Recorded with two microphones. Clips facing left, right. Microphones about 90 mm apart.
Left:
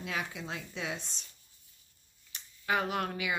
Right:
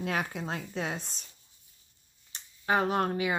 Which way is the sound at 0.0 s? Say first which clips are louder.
Right 5 dB; 50° right (ahead or behind).